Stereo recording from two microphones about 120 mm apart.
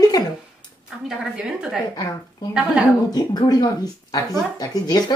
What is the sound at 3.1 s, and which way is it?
Speech, 35° left (ahead or behind).